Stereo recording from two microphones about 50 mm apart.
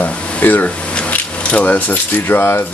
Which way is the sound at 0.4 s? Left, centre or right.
Left.